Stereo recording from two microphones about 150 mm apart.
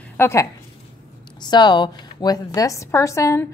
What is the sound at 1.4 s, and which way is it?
A woman's voice, 30° left (ahead or behind).